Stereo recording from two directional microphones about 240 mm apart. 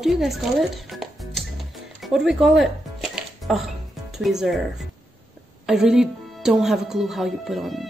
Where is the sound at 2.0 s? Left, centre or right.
Centre.